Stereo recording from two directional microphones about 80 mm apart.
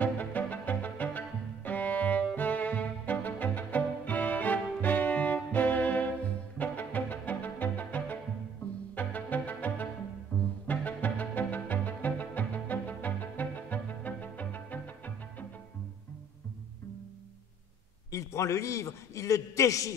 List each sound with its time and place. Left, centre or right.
0.0 s music: left
18.1 s a man's voice: left